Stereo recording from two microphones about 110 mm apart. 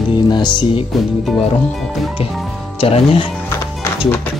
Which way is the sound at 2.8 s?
60° left (ahead or behind).